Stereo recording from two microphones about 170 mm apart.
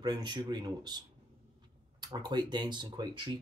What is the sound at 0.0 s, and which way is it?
Speech, 25° right (ahead or behind).